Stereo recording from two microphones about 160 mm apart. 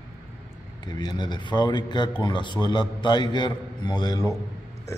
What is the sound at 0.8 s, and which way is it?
A man's voice, 25° left (ahead or behind).